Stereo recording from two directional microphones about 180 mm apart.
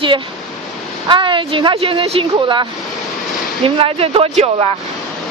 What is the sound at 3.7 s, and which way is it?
Speech, 30° right (ahead or behind).